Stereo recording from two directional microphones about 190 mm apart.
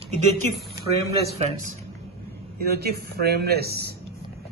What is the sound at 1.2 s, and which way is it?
Speech, 35° right (ahead or behind).